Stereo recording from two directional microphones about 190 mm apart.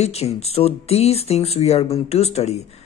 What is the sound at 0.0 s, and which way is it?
A woman's voice, 35° left (ahead or behind).